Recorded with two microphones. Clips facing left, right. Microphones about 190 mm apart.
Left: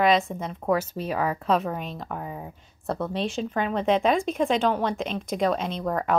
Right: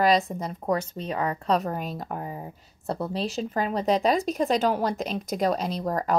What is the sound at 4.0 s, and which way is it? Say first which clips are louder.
Speech: left 1 dB; 35° right (ahead or behind).